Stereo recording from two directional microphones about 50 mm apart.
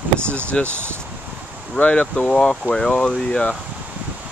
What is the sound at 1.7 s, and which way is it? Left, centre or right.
Speech, left.